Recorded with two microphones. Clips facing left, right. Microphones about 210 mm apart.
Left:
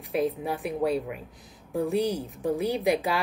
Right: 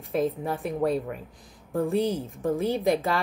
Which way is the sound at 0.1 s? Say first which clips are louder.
Right 1 dB; 5° left (ahead or behind).